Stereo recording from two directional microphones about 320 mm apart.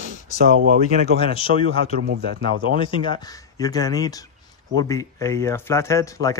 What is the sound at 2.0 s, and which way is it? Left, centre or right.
Speech, right.